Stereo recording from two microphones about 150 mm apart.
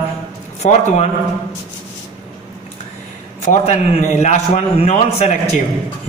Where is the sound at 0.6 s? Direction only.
50° left (ahead or behind).